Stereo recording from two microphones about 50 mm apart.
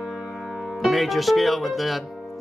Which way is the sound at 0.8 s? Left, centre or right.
Centre.